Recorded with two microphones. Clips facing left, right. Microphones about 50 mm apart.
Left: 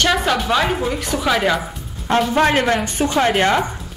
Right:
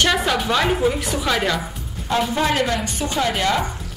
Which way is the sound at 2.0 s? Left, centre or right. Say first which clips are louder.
Left 4 dB; left.